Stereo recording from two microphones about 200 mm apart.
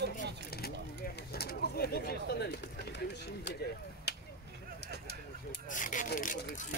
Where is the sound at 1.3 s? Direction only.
50° left (ahead or behind).